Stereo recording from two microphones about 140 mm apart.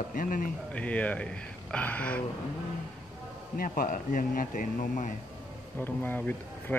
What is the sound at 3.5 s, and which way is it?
Speech, 80° left.